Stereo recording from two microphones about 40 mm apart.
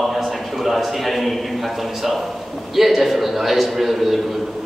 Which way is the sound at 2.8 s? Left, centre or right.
Centre.